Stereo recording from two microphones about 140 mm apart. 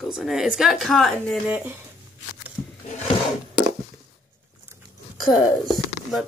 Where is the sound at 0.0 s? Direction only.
Centre (ahead or behind).